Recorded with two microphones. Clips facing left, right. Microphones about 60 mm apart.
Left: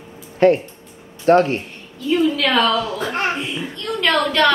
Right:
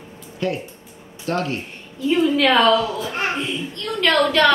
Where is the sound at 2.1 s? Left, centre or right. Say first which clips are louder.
Even; right.